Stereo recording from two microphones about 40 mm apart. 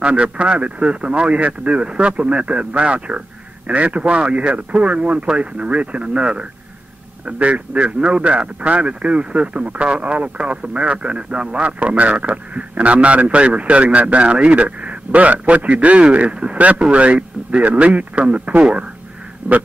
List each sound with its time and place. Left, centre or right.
0.0 s a man's voice: right
16.5 s a man's voice: right
19.4 s duck: right